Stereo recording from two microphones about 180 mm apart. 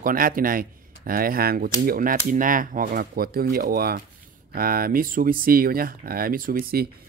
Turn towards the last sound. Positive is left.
turn(degrees=-55)  # may be behind; listen again after turning